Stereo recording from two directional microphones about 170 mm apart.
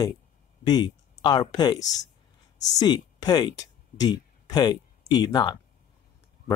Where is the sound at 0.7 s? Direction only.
25° left (ahead or behind).